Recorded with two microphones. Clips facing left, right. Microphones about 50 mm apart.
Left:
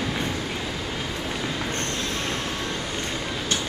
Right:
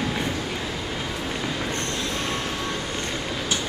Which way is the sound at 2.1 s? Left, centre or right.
Right.